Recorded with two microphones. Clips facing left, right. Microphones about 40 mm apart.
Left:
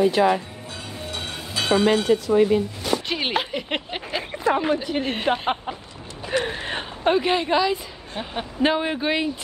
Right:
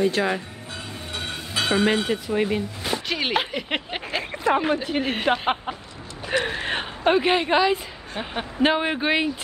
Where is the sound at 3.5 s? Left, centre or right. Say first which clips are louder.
Even; centre.